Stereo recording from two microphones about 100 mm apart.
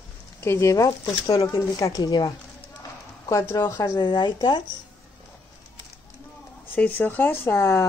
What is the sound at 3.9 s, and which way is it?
Speech, 50° left (ahead or behind).